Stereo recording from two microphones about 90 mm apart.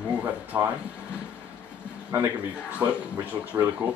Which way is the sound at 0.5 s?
35° right (ahead or behind).